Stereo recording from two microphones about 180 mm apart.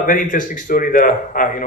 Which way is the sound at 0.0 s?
50° left (ahead or behind).